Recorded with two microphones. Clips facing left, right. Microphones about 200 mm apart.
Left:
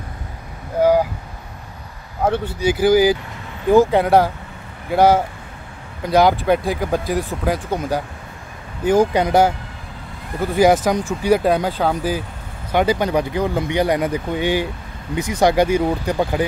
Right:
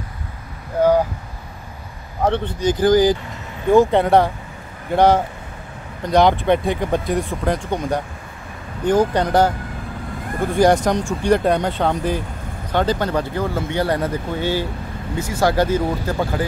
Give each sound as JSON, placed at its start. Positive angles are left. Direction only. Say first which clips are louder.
{"t": 2.2, "sound": "speech", "louder": "even", "side_deg": 5}
{"t": 10.5, "sound": "speech", "louder": "left 1 dB", "side_deg": 5}